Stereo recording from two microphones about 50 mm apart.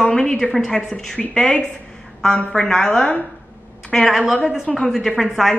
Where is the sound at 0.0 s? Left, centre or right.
Centre.